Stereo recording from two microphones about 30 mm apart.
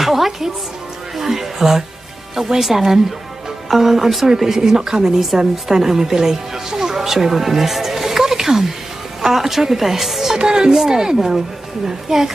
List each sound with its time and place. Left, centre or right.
0.0 s a woman's voice: centre
4.6 s a woman's voice: right; by 10.3 s centre
10.3 s a woman's voice: right